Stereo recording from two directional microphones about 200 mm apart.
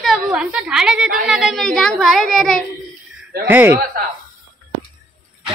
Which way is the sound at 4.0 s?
50° right (ahead or behind).